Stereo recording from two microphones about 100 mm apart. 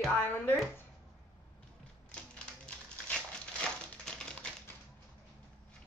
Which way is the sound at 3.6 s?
5° left (ahead or behind).